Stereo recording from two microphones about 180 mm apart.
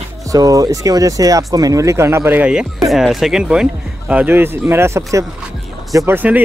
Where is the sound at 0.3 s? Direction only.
20° right (ahead or behind).